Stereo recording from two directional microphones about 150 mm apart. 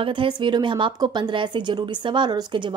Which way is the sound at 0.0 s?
35° right (ahead or behind).